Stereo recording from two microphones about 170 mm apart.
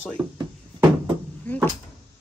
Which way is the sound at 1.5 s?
10° left (ahead or behind).